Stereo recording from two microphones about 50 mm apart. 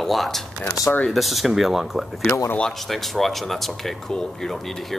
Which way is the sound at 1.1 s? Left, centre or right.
Centre.